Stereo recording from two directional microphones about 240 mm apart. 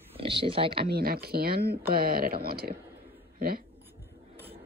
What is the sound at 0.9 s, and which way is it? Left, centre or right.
Speech, right.